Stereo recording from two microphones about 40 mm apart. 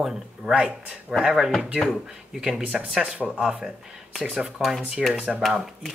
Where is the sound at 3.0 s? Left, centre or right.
Right.